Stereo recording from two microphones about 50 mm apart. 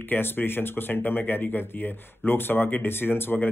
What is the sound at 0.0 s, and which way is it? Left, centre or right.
Speech, left.